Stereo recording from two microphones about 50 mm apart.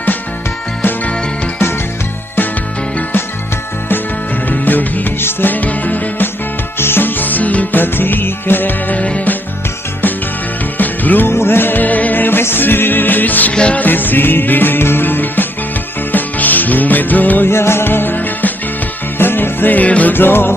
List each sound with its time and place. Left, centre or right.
4.5 s music: left
8.9 s music: left
10.8 s music: left
11.2 s music: left
13.5 s music: left
13.8 s music: left
17.5 s music: left
20.2 s music: left